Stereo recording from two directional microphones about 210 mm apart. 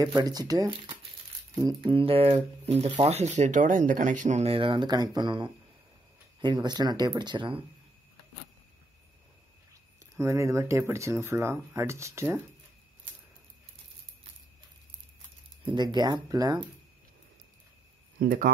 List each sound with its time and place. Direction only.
0.0 s speech: 20° right (ahead or behind)
10.1 s speech: 15° right (ahead or behind)
15.6 s speech: 20° right (ahead or behind)
18.2 s speech: 40° right (ahead or behind)